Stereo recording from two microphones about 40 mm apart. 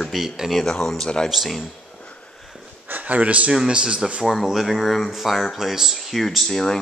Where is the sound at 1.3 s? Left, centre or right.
Centre.